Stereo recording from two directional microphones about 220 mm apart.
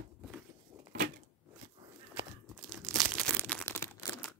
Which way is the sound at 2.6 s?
5° left (ahead or behind).